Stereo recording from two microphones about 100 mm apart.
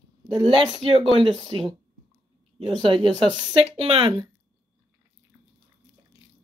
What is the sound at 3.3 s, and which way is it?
Speech, 70° right (ahead or behind).